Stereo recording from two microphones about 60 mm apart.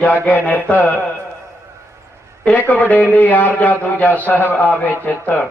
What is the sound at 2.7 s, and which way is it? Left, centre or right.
A man's voice, left.